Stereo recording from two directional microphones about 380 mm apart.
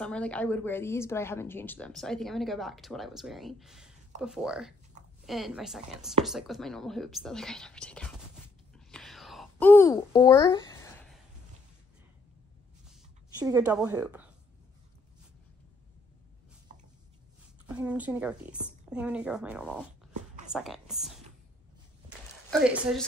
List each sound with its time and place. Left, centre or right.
0.0 s speech: centre
8.7 s whispering: centre
13.4 s speech: centre
17.6 s speech: centre
20.1 s dog: centre
20.5 s speech: centre
22.5 s speech: centre